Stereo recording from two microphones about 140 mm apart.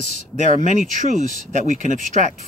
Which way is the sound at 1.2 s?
60° right (ahead or behind).